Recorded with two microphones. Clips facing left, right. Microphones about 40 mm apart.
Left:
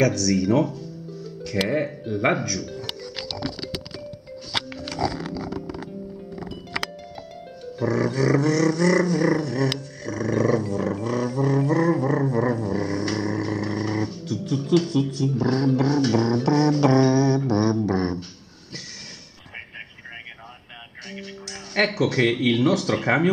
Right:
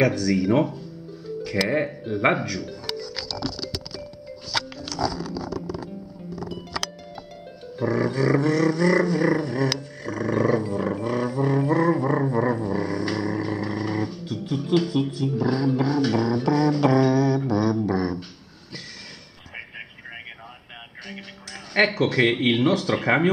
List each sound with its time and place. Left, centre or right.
0.0 s dog: centre
1.2 s speech: centre
3.3 s music: left
7.7 s dog: centre
9.8 s roar: centre
21.1 s speech: centre